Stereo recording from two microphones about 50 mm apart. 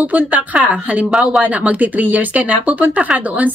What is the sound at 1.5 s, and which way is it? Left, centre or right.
Speech, right.